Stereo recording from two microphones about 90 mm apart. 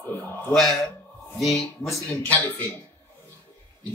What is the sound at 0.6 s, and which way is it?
Speech, 5° left (ahead or behind).